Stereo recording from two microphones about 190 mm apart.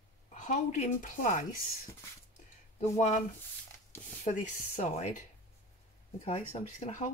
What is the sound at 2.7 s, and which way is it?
Speech, 40° left (ahead or behind).